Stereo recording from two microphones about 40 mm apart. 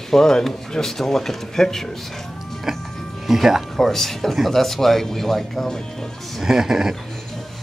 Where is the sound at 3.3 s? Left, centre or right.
Centre.